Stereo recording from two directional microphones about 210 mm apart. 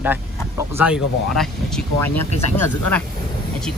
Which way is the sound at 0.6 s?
10° right (ahead or behind).